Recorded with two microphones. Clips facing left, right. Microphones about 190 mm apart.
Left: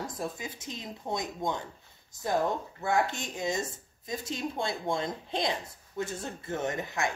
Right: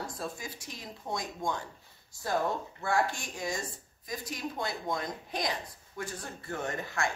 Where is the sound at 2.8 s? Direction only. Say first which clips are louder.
Left 2 dB; 20° left (ahead or behind).